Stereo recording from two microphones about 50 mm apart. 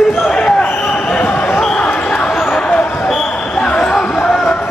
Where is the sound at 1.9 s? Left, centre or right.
Left.